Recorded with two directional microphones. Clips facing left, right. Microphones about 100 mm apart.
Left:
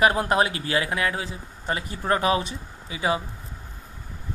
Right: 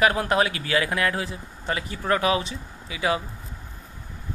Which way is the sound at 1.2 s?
30° left (ahead or behind).